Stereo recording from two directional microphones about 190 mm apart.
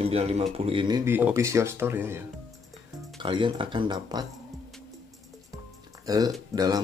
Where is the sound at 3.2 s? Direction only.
25° right (ahead or behind).